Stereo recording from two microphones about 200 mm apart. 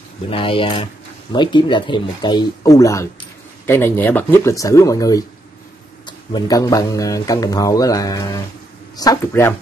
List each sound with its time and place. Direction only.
0.3 s speech: 25° left (ahead or behind)